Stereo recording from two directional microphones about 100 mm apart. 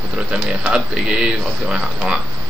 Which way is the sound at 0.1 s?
10° right (ahead or behind).